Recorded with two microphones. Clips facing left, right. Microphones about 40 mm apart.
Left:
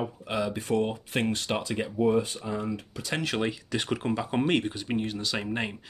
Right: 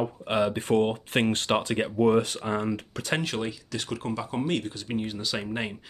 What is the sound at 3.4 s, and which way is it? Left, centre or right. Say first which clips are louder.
Speech: left 3 dB; left.